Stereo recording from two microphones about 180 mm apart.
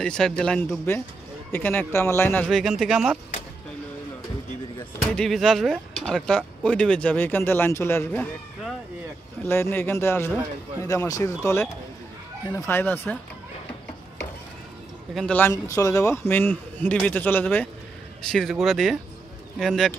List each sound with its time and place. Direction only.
0.0 s speech: 5° left (ahead or behind)
4.9 s speech: 5° left (ahead or behind)
9.4 s speech: 10° left (ahead or behind)
15.1 s speech: 5° left (ahead or behind)
15.5 s speech: 20° left (ahead or behind); by 19.9 s centre (ahead or behind)